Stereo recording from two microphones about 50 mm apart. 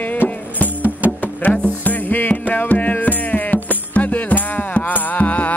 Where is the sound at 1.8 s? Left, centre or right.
Left.